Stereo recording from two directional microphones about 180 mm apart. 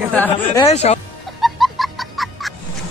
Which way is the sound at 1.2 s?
Centre (ahead or behind).